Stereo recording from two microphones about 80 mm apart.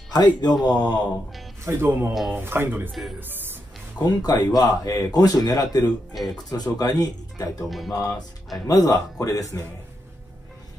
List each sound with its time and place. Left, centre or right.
0.1 s a man's voice: left
1.6 s speech: right
2.9 s speech: centre
4.0 s speech: left
6.1 s speech: centre
6.5 s speech: left